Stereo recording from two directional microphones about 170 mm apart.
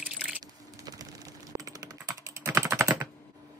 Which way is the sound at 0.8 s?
20° right (ahead or behind).